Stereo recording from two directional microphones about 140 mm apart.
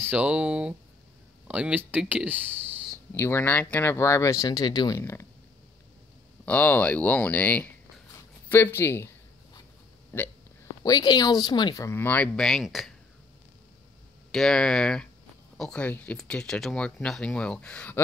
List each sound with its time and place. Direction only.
0.0 s speech: 10° right (ahead or behind)
3.2 s speech: 15° left (ahead or behind)
4.9 s speech: 20° left (ahead or behind)
6.4 s speech: 10° left (ahead or behind)
10.1 s speech: 15° left (ahead or behind)
10.8 s speech: 30° left (ahead or behind); by 12.9 s centre (ahead or behind)
14.3 s speech: 5° left (ahead or behind)